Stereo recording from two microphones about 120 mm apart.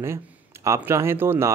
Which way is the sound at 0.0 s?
20° right (ahead or behind).